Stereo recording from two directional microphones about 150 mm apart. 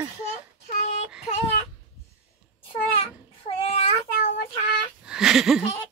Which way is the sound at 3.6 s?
45° left (ahead or behind).